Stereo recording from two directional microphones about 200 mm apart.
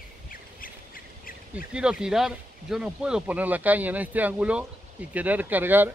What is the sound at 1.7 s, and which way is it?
Speech, 5° right (ahead or behind).